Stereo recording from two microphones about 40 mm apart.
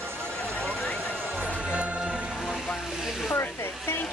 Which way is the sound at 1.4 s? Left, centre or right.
Right.